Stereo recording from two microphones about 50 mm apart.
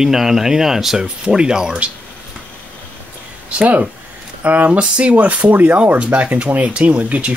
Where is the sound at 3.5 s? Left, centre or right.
Right.